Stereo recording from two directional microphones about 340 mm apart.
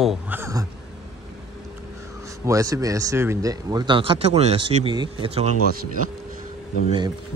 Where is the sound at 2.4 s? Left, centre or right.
Centre.